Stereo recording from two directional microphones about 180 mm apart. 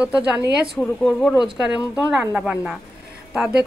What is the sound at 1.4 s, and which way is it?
Speech, 25° left (ahead or behind).